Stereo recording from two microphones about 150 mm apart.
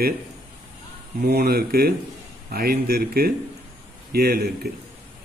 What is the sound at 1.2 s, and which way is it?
Speech, 90° right.